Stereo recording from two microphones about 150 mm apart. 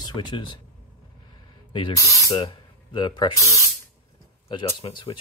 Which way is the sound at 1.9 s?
20° left (ahead or behind).